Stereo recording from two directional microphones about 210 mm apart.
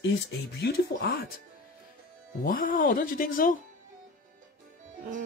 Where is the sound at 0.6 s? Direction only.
45° left (ahead or behind).